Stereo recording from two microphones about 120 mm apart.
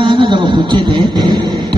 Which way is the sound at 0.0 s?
45° right (ahead or behind).